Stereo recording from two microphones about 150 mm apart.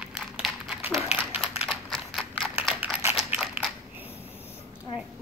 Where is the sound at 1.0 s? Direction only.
5° right (ahead or behind).